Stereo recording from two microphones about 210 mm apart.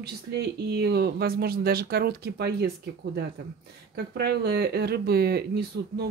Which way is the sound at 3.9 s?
50° right (ahead or behind).